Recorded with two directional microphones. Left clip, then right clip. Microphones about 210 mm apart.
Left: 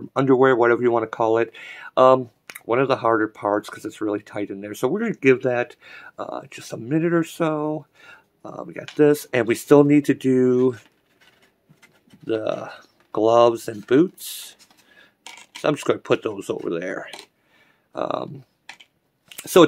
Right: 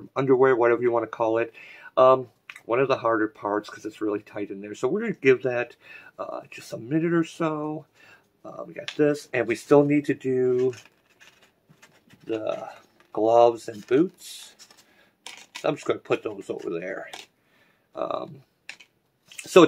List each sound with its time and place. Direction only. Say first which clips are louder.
0.1 s speech: left 3 dB; 35° left (ahead or behind)
12.3 s speech: left 4 dB; 45° left (ahead or behind)
15.6 s speech: left 5 dB; 45° left (ahead or behind)
19.2 s a sound: left 1 dB; 40° left (ahead or behind)